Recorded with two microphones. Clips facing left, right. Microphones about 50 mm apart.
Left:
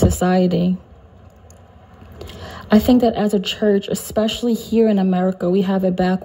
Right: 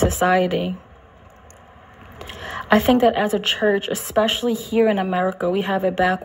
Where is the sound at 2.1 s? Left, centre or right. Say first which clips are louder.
Right 4 dB; right.